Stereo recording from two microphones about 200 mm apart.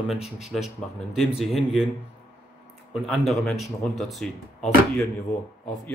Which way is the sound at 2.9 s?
Centre (ahead or behind).